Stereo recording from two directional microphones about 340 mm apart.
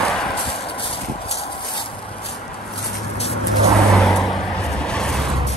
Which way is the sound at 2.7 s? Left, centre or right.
Centre.